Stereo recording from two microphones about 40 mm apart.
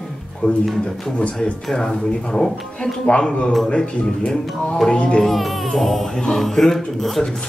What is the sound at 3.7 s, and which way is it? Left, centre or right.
Speech, left.